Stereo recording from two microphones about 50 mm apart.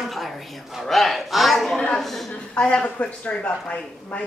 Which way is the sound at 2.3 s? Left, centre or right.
Left.